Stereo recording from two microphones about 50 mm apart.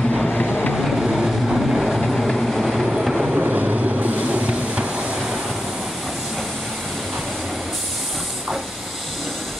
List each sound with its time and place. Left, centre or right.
0.3 s vehicle: centre
0.7 s vehicle: centre
2.0 s vehicle: centre
3.3 s a sound: right